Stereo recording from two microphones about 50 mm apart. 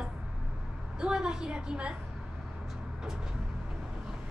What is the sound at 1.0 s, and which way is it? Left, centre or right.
Speech, centre.